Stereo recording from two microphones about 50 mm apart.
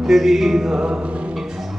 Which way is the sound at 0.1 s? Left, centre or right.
Centre.